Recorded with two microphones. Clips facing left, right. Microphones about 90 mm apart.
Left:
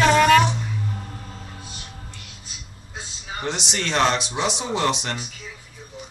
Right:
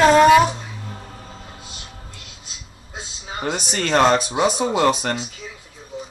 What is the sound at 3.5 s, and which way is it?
Speech, 50° right (ahead or behind).